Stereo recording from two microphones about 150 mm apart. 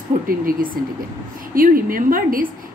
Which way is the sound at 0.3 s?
70° right (ahead or behind).